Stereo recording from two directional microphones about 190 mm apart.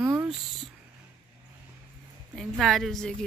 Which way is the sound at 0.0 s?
10° right (ahead or behind).